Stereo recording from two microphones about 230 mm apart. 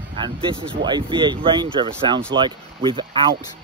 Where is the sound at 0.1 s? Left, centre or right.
Right.